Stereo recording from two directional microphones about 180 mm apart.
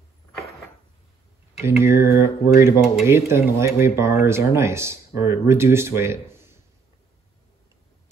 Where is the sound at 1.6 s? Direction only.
15° right (ahead or behind).